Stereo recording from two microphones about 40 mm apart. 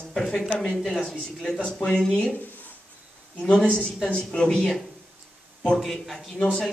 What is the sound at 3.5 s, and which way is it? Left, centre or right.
Speech, centre.